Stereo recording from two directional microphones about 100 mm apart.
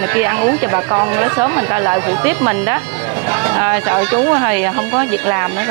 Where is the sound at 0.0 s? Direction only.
25° right (ahead or behind).